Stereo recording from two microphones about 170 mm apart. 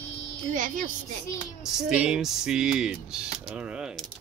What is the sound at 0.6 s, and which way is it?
Speech, 50° right (ahead or behind).